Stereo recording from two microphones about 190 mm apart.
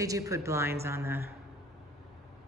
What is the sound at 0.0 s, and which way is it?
Speech, 15° right (ahead or behind).